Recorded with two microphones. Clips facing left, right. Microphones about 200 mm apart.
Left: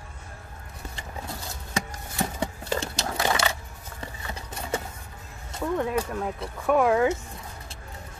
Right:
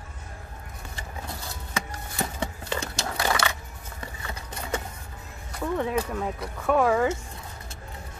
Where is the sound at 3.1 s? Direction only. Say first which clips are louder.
Left 1 dB; 30° left (ahead or behind).